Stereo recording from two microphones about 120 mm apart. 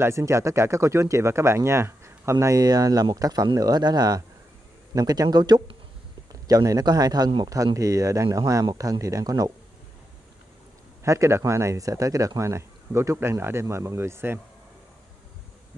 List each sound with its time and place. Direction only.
0.0 s speech: 25° right (ahead or behind)
11.1 s speech: 25° right (ahead or behind)